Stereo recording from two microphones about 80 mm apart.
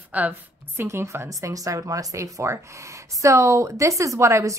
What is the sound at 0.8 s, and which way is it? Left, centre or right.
Speech, right.